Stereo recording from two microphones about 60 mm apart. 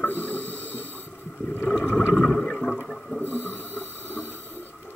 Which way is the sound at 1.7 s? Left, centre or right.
Centre.